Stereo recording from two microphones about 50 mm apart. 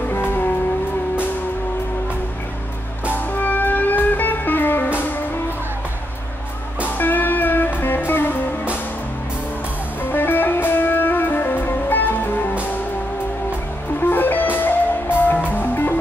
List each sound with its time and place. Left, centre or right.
0.1 s music: left
3.3 s music: left
7.0 s music: left
10.0 s music: left
14.0 s music: left